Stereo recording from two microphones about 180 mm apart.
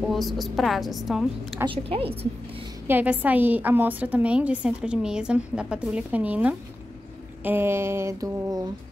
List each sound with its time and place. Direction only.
0.0 s a woman's voice: centre (ahead or behind)
1.6 s a woman's voice: 30° right (ahead or behind)
2.9 s a woman's voice: 10° right (ahead or behind)